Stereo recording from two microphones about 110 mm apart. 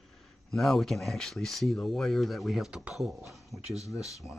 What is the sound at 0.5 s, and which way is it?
Speech, centre (ahead or behind).